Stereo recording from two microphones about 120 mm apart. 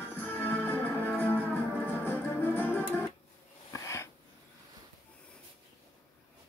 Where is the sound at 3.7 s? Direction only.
25° left (ahead or behind).